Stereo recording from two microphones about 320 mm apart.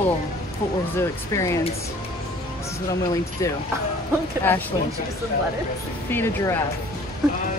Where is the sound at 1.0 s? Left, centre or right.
Centre.